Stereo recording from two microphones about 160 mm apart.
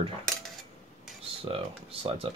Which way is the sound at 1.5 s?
35° right (ahead or behind).